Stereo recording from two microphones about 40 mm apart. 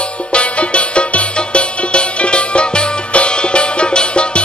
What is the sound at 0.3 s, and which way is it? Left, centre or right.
Music, left.